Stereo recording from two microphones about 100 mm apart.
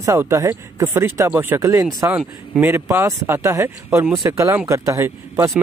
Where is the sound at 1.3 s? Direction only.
20° right (ahead or behind).